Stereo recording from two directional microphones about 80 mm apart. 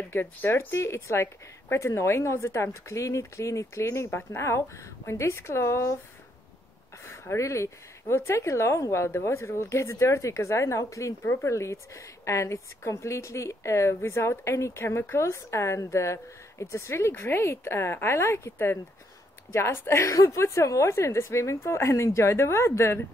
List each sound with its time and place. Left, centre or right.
0.1 s a woman's voice: left
7.1 s a woman's voice: left